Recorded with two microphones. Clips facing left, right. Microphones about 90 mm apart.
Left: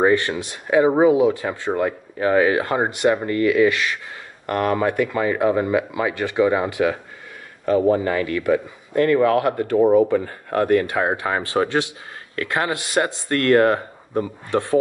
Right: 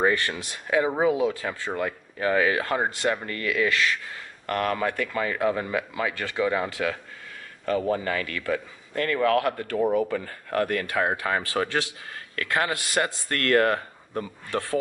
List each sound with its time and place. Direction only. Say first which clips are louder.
0.1 s speech: left 7 dB; 25° left (ahead or behind)
1.8 s speech: left 6 dB; 30° left (ahead or behind)